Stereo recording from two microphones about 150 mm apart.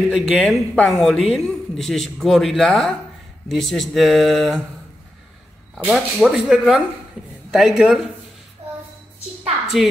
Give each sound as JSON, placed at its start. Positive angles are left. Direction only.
{"t": 0.1, "sound": "a man's voice", "side_deg": 0}
{"t": 5.9, "sound": "a man's voice", "side_deg": 5}